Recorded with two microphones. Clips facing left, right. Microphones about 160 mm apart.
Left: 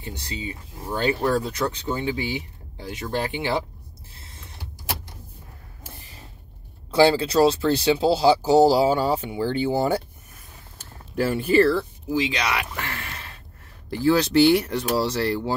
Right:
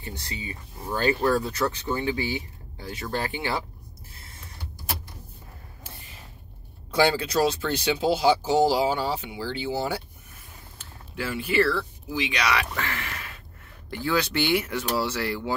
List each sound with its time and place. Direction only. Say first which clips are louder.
0.0 s speech: left 3 dB; 20° left (ahead or behind)
6.9 s speech: left 5 dB; 30° left (ahead or behind); by 10.0 s 50° left (ahead or behind)
10.8 s a sound: left 9 dB; 40° left (ahead or behind)
12.1 s speech: left 2 dB; 25° left (ahead or behind)
12.9 s a sound: right 1 dB; 30° left (ahead or behind)
14.0 s speech: left 8 dB; 40° left (ahead or behind)